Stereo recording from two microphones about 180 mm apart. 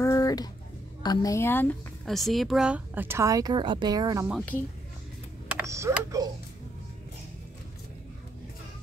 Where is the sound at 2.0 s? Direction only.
Centre (ahead or behind); by 4.3 s 20° right (ahead or behind).